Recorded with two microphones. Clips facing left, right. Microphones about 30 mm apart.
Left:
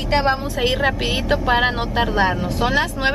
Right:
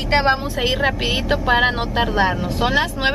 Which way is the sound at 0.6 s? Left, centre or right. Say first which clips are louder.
Even; centre.